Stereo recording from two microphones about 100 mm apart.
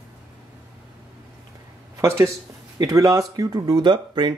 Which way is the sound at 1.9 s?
30° right (ahead or behind).